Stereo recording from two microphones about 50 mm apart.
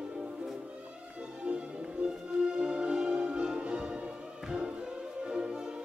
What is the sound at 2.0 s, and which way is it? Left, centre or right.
Music, centre.